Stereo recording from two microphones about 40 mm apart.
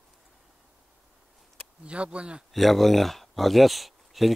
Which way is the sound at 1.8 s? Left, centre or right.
Right.